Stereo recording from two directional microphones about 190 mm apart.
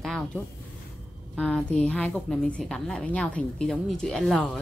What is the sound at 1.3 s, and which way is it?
Speech, 5° left (ahead or behind).